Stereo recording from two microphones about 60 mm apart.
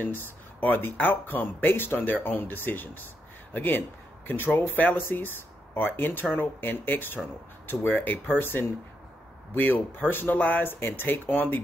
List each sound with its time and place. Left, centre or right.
0.0 s speech: left